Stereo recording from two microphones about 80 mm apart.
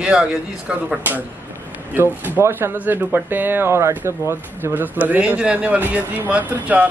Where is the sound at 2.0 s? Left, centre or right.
Right.